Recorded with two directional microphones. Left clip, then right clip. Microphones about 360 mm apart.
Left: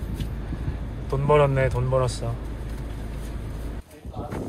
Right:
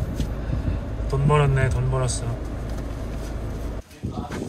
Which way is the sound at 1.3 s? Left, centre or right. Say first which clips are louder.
Left 4 dB; centre.